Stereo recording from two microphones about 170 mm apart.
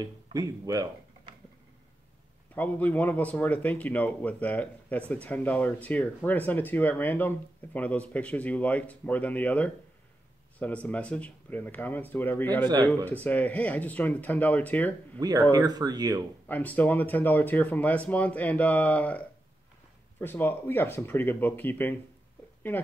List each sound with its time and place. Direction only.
0.0 s speech: 20° right (ahead or behind)
2.5 s speech: 10° left (ahead or behind)
12.6 s speech: 25° right (ahead or behind)
13.0 s speech: 10° left (ahead or behind)
15.5 s speech: 25° right (ahead or behind)
16.4 s speech: 10° left (ahead or behind)